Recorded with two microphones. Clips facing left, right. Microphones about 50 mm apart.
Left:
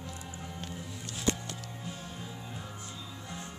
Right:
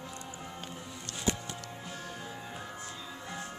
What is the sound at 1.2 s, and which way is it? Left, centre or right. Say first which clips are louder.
Music: left 1 dB; centre.